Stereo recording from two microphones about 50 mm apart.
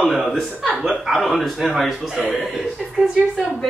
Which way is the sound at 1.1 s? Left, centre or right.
Centre.